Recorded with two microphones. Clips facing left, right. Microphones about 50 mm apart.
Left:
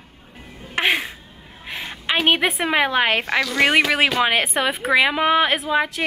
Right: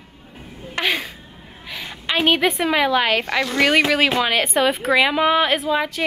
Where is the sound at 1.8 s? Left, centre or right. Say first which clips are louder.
Even; centre.